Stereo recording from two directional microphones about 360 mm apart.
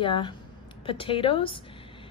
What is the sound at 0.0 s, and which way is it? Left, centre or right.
A woman's voice, centre.